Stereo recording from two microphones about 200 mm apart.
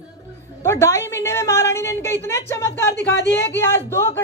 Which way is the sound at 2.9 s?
55° left (ahead or behind).